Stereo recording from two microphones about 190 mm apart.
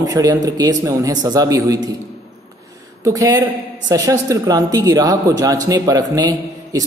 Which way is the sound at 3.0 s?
15° right (ahead or behind).